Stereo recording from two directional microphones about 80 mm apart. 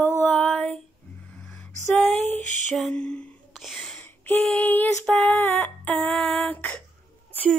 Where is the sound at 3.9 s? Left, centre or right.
Left.